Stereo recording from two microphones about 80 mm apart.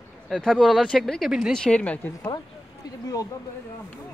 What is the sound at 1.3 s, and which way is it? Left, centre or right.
Speech, centre.